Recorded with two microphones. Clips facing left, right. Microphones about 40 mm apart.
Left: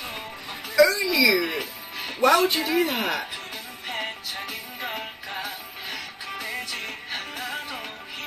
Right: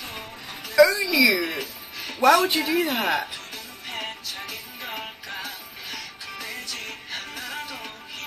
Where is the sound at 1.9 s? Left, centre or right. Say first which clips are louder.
Left 2 dB; left.